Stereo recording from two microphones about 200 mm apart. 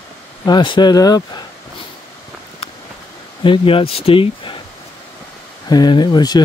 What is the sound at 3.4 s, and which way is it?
Speech, 25° left (ahead or behind).